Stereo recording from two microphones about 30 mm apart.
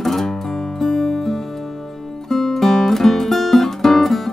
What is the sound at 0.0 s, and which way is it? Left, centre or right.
Music, centre.